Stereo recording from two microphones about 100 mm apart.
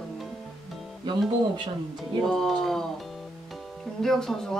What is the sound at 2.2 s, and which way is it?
Speech, 5° left (ahead or behind).